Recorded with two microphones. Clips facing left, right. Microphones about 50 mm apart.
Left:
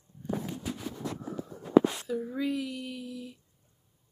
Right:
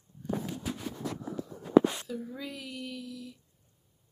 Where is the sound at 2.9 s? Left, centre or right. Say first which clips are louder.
Left 2 dB; left.